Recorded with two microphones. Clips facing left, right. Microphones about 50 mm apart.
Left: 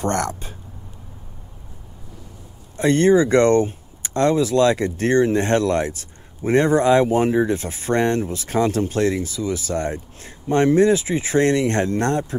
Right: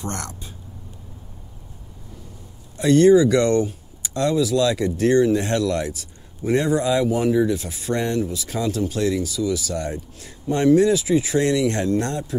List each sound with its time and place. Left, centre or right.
0.0 s speech: left
2.8 s speech: left